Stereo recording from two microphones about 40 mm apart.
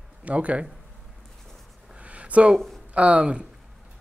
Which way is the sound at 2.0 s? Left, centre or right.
Right.